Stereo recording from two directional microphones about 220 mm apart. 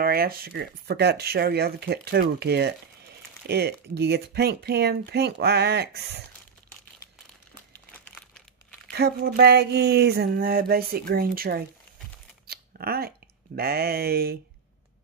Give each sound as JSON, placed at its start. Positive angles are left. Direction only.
{"t": 0.0, "sound": "speech", "side_deg": -45}
{"t": 7.7, "sound": "crumpling", "side_deg": 5}
{"t": 8.9, "sound": "speech", "side_deg": -50}
{"t": 12.4, "sound": "scissors", "side_deg": -45}
{"t": 13.6, "sound": "speech", "side_deg": -45}